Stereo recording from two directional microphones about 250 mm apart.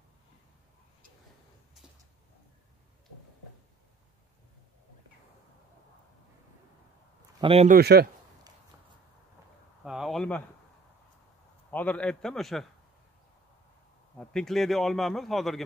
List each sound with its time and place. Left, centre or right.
7.3 s speech: right
7.7 s speech: right
9.8 s a sound: centre
11.7 s a man's voice: centre
14.1 s a man's voice: centre